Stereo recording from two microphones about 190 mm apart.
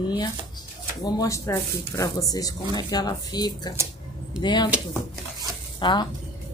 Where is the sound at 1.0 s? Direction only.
20° left (ahead or behind).